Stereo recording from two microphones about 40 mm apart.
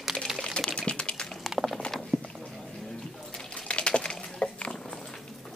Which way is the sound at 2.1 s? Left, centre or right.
Right.